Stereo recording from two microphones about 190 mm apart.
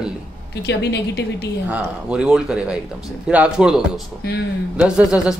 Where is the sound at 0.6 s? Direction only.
65° left (ahead or behind).